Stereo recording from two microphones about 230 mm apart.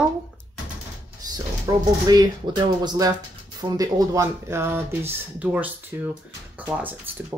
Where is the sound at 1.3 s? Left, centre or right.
Centre.